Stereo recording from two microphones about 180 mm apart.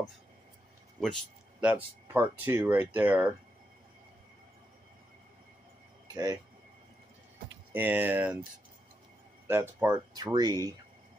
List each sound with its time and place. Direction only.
1.6 s speech: 10° right (ahead or behind)
6.1 s speech: 20° right (ahead or behind)
7.7 s speech: 10° right (ahead or behind)
9.5 s speech: 15° right (ahead or behind)